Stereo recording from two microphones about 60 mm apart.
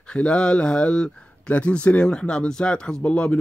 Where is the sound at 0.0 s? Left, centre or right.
Centre.